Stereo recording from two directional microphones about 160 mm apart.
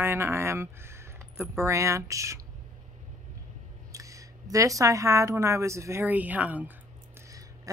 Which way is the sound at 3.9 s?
20° right (ahead or behind).